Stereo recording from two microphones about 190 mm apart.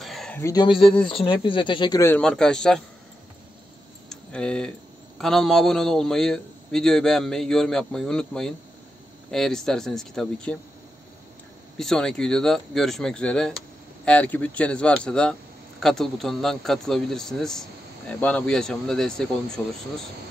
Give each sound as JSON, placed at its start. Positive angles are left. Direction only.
{"t": 0.0, "sound": "a sound", "side_deg": 0}
{"t": 0.4, "sound": "speech", "side_deg": 20}
{"t": 4.1, "sound": "tick", "side_deg": 5}
{"t": 5.2, "sound": "a man's voice", "side_deg": 0}
{"t": 11.8, "sound": "a man's voice", "side_deg": 5}